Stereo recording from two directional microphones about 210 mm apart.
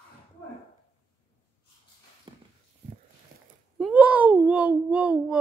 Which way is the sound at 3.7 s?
5° right (ahead or behind).